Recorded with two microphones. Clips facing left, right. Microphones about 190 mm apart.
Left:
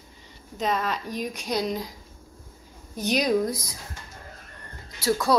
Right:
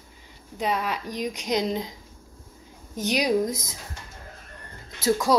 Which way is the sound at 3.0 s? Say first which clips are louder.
Even; 15° right (ahead or behind).